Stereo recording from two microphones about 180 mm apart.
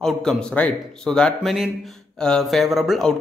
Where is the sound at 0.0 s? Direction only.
5° left (ahead or behind).